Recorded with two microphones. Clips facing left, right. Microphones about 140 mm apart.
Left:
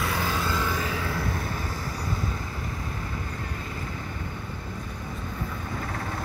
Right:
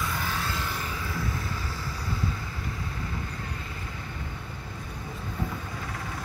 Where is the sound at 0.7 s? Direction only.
90° left.